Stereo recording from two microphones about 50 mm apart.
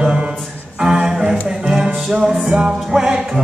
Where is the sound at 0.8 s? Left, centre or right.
Centre.